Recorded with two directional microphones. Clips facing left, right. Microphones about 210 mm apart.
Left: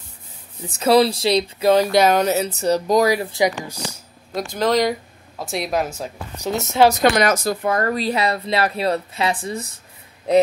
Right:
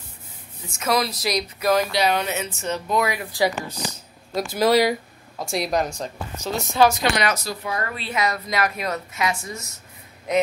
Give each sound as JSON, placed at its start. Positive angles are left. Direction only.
{"t": 0.7, "sound": "speech", "side_deg": 35}
{"t": 1.9, "sound": "speech", "side_deg": 45}
{"t": 3.3, "sound": "speech", "side_deg": 15}
{"t": 4.3, "sound": "speech", "side_deg": -5}
{"t": 6.5, "sound": "speech", "side_deg": 25}
{"t": 6.9, "sound": "speech", "side_deg": 45}